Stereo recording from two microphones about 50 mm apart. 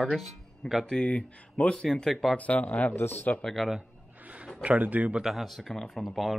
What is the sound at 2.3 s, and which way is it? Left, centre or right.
Speech, left.